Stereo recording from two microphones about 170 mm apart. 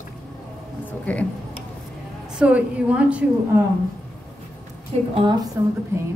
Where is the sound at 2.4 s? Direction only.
10° right (ahead or behind).